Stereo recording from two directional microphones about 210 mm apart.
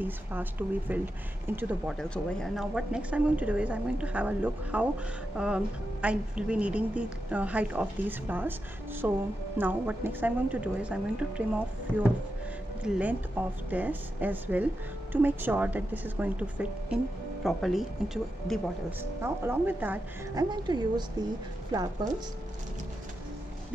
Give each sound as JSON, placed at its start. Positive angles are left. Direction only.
{"t": 0.0, "sound": "a woman's voice", "side_deg": -10}
{"t": 12.8, "sound": "a woman's voice", "side_deg": -5}
{"t": 20.4, "sound": "a woman's voice", "side_deg": -20}